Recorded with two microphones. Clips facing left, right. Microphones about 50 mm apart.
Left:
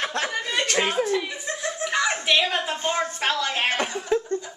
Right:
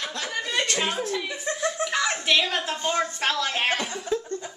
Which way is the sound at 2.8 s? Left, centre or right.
Left.